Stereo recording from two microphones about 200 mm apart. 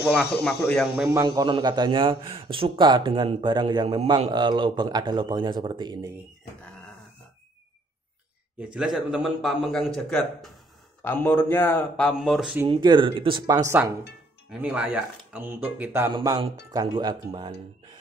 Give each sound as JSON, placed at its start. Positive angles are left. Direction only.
{"t": 0.3, "sound": "speech", "side_deg": 5}
{"t": 0.9, "sound": "speech", "side_deg": -5}
{"t": 1.2, "sound": "a man's voice", "side_deg": -20}
{"t": 8.7, "sound": "a man's voice", "side_deg": 0}
{"t": 12.6, "sound": "a man's voice", "side_deg": -25}
{"t": 16.1, "sound": "a man's voice", "side_deg": -20}